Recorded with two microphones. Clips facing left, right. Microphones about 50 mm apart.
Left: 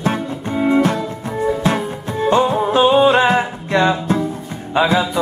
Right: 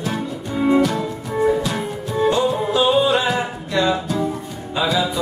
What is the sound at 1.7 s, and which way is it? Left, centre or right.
Music, left.